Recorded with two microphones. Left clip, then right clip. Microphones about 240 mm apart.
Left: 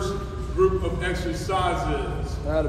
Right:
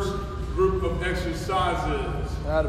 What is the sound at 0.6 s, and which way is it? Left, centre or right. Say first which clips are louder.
A man's voice: left 2 dB; centre.